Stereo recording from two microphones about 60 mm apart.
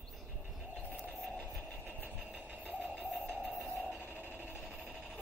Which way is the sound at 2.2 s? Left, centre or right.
Centre.